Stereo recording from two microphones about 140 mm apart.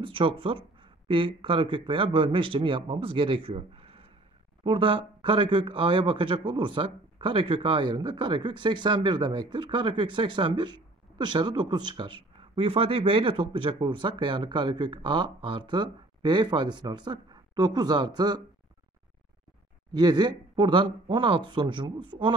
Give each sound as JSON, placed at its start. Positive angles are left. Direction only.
{"t": 0.0, "sound": "speech", "side_deg": -40}
{"t": 19.9, "sound": "speech", "side_deg": -30}